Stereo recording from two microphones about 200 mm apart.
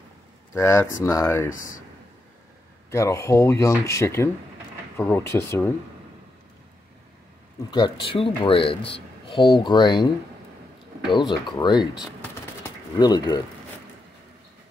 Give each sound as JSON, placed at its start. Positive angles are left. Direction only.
{"t": 0.6, "sound": "speech", "side_deg": 15}
{"t": 2.9, "sound": "speech", "side_deg": 15}
{"t": 7.7, "sound": "speech", "side_deg": 25}
{"t": 11.1, "sound": "speech", "side_deg": 20}
{"t": 12.6, "sound": "pigeon", "side_deg": 20}